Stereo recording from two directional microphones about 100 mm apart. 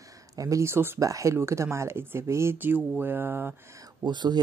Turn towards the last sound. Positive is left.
turn(degrees=-45)  # may be behind; listen again after turning